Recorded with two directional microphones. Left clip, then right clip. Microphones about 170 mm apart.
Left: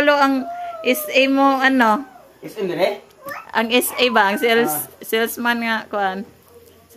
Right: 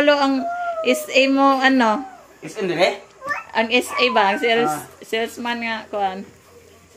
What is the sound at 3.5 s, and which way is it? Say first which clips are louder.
A woman's voice: left 2 dB; 30° left (ahead or behind).